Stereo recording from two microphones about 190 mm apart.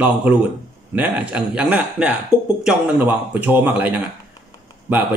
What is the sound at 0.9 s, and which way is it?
Speech, 5° right (ahead or behind).